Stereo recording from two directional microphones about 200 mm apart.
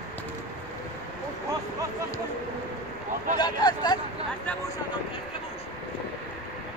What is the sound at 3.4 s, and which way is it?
Speech, 20° left (ahead or behind).